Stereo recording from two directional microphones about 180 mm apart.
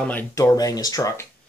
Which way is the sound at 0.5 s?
20° left (ahead or behind).